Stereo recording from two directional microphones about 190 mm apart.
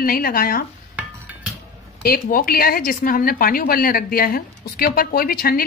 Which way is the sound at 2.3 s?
50° left (ahead or behind).